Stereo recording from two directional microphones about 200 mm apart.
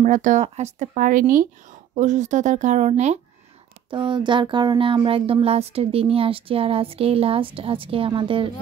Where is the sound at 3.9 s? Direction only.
25° right (ahead or behind).